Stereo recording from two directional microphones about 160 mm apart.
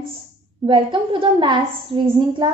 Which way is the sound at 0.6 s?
30° right (ahead or behind).